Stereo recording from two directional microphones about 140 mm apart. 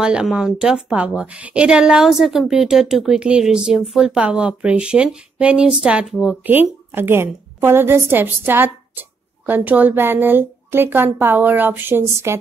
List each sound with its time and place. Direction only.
0.0 s a woman's voice: 5° right (ahead or behind)